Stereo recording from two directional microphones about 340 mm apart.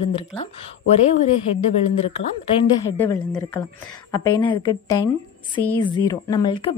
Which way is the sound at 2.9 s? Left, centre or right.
Centre.